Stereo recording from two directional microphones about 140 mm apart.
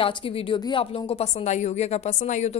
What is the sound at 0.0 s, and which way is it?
A woman's voice, 40° left (ahead or behind).